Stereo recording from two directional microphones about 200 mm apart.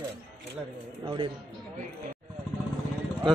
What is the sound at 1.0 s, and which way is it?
Speech, 25° right (ahead or behind).